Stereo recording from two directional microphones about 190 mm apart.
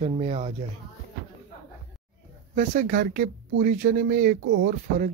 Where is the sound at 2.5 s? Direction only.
45° right (ahead or behind).